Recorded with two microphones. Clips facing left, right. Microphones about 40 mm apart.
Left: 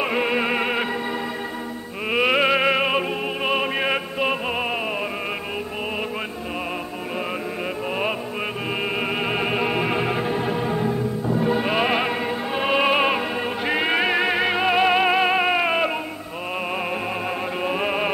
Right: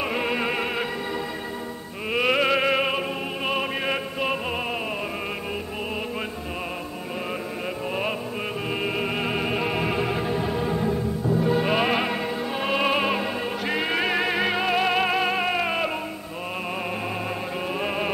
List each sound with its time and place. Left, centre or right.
0.0 s music: centre
2.0 s opera: centre
8.8 s music: centre
17.6 s music: centre